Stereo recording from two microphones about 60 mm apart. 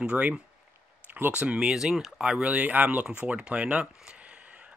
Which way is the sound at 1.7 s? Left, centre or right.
Centre.